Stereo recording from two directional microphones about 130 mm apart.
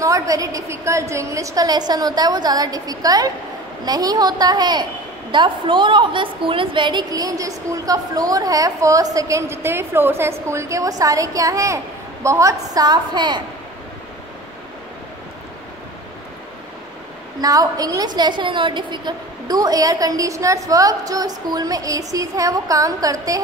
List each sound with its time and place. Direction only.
0.0 s a woman's voice: 25° right (ahead or behind)
17.4 s a woman's voice: 30° right (ahead or behind)